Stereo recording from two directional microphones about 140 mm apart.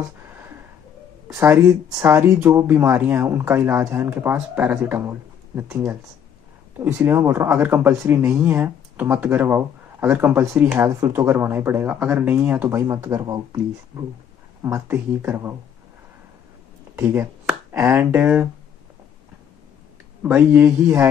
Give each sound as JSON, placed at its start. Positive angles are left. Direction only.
{"t": 2.0, "sound": "speech", "side_deg": -15}
{"t": 14.6, "sound": "speech", "side_deg": -15}
{"t": 16.9, "sound": "speech", "side_deg": -15}
{"t": 20.2, "sound": "speech", "side_deg": -15}